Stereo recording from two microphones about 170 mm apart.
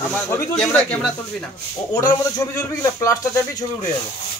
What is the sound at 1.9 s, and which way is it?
Speech, 20° left (ahead or behind).